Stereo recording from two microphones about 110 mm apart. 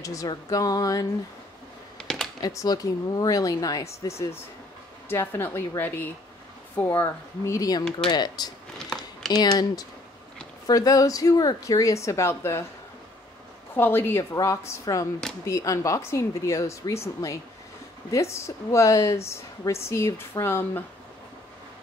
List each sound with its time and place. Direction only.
0.0 s speech: 30° left (ahead or behind)
2.1 s computer keyboard: 5° left (ahead or behind)
2.4 s speech: 35° left (ahead or behind)
5.1 s a woman's voice: 20° left (ahead or behind); by 8.5 s 40° left (ahead or behind)
8.7 s a sound: 5° left (ahead or behind)
9.3 s speech: 35° left (ahead or behind)
13.7 s a woman's voice: 20° left (ahead or behind)